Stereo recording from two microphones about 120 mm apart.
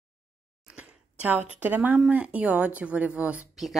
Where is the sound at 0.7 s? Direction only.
10° right (ahead or behind).